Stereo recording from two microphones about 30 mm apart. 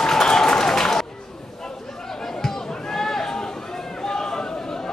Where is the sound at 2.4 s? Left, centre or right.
Centre.